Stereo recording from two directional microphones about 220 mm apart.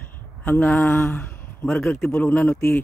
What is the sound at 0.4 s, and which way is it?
A man's voice, 10° left (ahead or behind).